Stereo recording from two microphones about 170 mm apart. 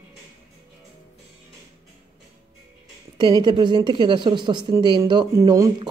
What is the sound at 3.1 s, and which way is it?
Speech, 25° right (ahead or behind).